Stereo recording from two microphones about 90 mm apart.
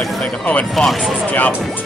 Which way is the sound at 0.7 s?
5° left (ahead or behind).